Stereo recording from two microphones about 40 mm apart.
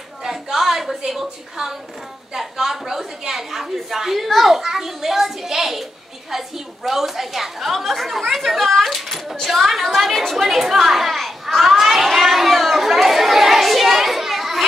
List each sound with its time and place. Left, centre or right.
0.2 s a sound: centre
2.3 s a woman's voice: centre
10.8 s children playing: centre